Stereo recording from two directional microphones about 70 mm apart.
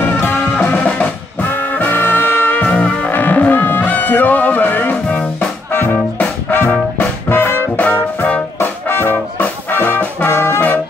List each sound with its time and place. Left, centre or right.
0.0 s music: left
0.8 s brass instrument: left
5.7 s music: left
7.7 s music: left